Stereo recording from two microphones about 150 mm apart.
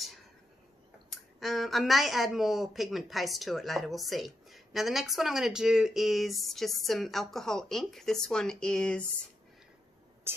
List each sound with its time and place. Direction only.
1.4 s speech: centre (ahead or behind)
10.3 s speech: 15° right (ahead or behind)